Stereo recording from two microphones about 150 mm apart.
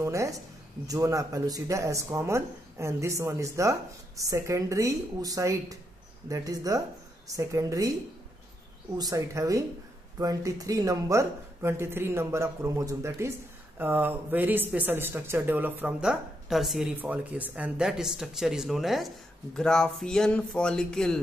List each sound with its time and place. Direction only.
0.0 s a sound: 20° right (ahead or behind)
0.8 s speech: 20° right (ahead or behind)
8.9 s speech: 25° right (ahead or behind); by 21.2 s 5° left (ahead or behind)